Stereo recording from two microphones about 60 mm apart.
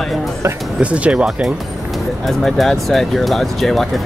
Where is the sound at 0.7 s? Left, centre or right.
Centre.